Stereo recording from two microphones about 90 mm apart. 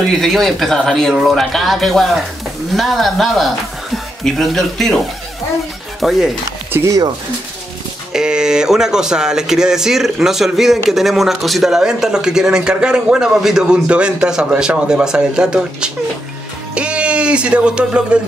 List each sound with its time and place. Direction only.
0.0 s speech: centre (ahead or behind)
6.7 s speech: 35° right (ahead or behind)
8.1 s speech: 5° right (ahead or behind)
16.7 s music: 10° right (ahead or behind)